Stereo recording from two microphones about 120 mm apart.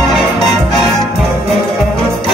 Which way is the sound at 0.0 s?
Centre (ahead or behind).